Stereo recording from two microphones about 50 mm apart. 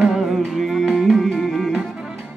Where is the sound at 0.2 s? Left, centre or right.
Centre.